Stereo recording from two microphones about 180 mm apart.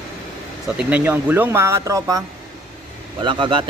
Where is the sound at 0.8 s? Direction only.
10° right (ahead or behind).